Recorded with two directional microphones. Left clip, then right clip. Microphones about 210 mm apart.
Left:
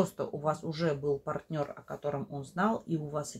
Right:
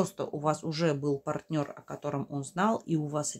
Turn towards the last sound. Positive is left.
turn(degrees=-35)  # may be behind; listen again after turning